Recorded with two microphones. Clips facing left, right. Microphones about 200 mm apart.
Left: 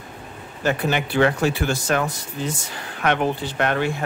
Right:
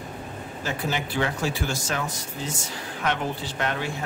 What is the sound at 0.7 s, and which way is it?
Speech, 65° left (ahead or behind).